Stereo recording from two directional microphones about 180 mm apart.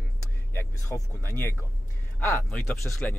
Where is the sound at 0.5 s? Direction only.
15° left (ahead or behind).